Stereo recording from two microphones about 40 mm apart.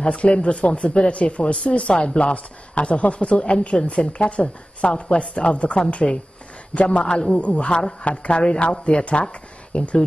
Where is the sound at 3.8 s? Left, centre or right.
Left.